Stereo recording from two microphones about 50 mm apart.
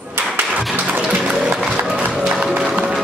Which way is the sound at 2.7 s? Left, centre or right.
Right.